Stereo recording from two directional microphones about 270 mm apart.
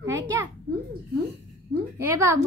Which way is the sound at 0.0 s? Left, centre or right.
Centre.